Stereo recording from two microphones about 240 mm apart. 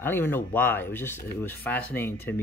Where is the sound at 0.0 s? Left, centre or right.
Centre.